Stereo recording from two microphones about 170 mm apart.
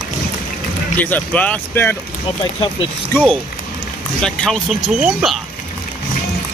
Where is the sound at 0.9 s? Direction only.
10° left (ahead or behind).